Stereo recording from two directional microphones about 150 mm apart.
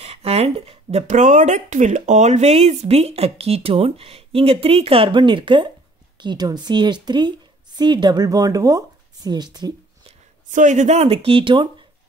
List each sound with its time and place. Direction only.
0.0 s a woman's voice: 45° right (ahead or behind)
10.5 s speech: 55° right (ahead or behind); by 11.7 s 35° right (ahead or behind)